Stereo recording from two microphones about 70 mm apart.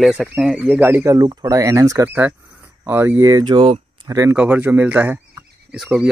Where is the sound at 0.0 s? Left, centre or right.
Centre.